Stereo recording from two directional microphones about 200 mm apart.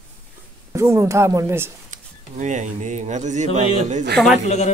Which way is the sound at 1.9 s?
35° right (ahead or behind).